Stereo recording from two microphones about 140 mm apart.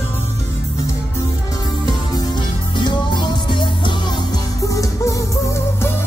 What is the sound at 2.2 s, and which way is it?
Music, 30° left (ahead or behind).